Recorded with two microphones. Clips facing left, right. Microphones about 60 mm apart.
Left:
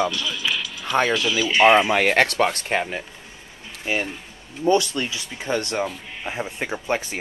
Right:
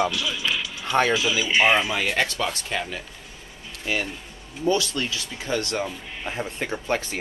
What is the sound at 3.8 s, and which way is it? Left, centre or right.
Speech, centre.